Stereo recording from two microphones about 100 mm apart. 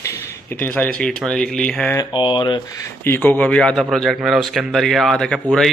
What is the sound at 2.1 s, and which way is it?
Speech, 50° left (ahead or behind).